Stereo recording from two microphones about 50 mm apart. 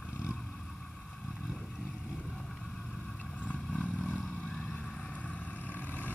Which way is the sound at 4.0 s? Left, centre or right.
Centre.